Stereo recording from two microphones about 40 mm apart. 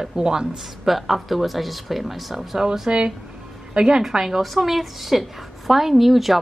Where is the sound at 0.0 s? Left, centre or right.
Centre.